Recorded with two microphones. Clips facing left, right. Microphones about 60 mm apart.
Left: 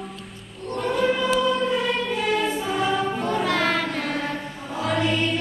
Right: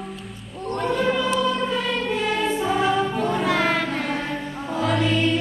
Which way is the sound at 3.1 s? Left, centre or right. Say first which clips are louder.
Right 1 dB; centre.